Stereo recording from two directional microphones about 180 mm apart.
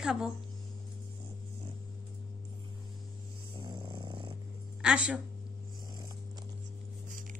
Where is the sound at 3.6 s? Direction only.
25° right (ahead or behind).